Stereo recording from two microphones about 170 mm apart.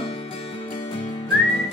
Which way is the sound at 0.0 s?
35° left (ahead or behind).